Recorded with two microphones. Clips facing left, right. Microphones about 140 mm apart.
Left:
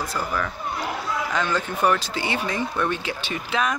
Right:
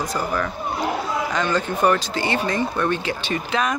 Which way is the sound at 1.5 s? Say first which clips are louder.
Right 3 dB; 5° left (ahead or behind).